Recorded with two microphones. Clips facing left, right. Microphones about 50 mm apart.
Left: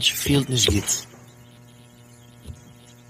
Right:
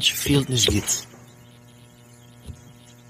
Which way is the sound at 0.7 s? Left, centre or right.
Right.